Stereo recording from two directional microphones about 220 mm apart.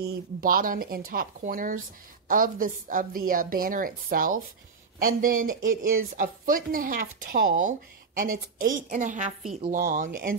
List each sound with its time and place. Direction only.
0.4 s speech: 40° right (ahead or behind)